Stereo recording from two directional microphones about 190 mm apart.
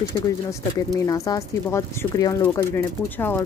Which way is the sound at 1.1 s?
20° left (ahead or behind).